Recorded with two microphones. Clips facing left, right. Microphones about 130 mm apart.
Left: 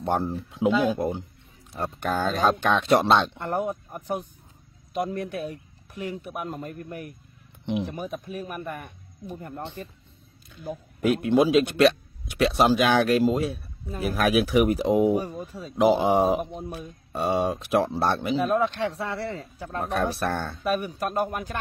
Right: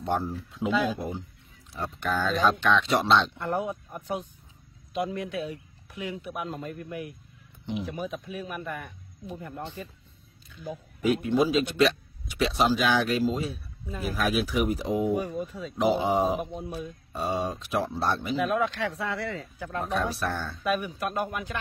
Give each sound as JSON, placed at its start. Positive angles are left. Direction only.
{"t": 0.0, "sound": "speech", "side_deg": 55}
{"t": 8.1, "sound": "speech", "side_deg": 45}
{"t": 10.5, "sound": "speech", "side_deg": 55}
{"t": 15.2, "sound": "speech", "side_deg": 35}
{"t": 15.8, "sound": "speech", "side_deg": 70}
{"t": 18.4, "sound": "speech", "side_deg": 35}
{"t": 19.8, "sound": "speech", "side_deg": 60}
{"t": 20.6, "sound": "speech", "side_deg": 40}